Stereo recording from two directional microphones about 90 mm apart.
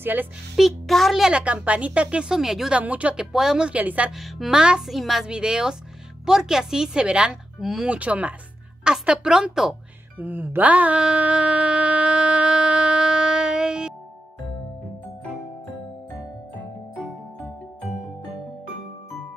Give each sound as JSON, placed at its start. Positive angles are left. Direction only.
{"t": 0.0, "sound": "speech", "side_deg": -20}
{"t": 0.6, "sound": "speech", "side_deg": 0}
{"t": 2.8, "sound": "speech", "side_deg": -15}
{"t": 4.2, "sound": "speech", "side_deg": -5}
{"t": 10.1, "sound": "a sound", "side_deg": -20}